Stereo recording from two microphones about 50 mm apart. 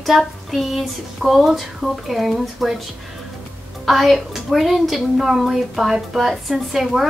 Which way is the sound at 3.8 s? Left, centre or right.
Centre.